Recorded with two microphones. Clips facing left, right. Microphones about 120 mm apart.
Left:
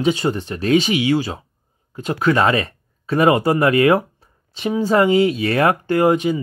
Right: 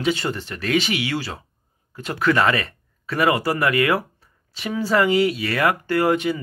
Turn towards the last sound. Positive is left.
turn(degrees=15)  # may be behind; listen again after turning